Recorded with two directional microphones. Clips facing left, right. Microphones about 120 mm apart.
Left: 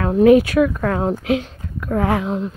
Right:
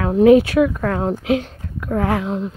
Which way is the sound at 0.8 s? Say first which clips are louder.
Even; 15° left (ahead or behind).